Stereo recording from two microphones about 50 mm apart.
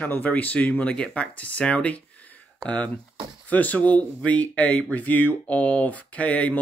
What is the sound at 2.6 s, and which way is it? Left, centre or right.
Speech, centre.